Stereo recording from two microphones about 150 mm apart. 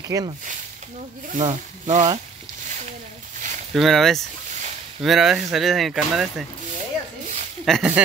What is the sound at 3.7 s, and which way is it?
Speech, centre (ahead or behind).